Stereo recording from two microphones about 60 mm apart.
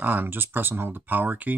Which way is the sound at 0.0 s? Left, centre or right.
Right.